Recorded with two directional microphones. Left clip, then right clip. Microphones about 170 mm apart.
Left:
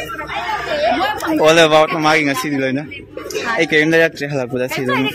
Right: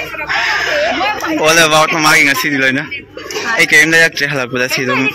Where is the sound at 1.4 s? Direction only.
15° left (ahead or behind).